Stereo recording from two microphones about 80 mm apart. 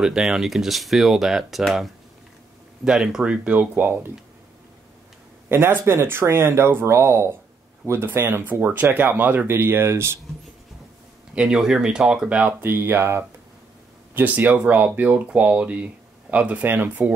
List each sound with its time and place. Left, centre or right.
0.0 s speech: centre
2.8 s speech: centre
5.5 s speech: right
11.3 s speech: centre
12.6 s speech: right